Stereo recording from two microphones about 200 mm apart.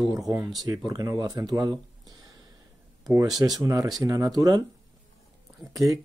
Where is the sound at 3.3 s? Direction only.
20° right (ahead or behind).